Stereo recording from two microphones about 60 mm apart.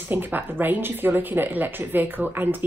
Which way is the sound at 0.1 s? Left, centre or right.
Right.